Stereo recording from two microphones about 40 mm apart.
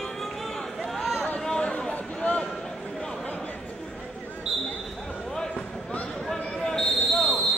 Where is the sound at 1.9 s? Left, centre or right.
Left.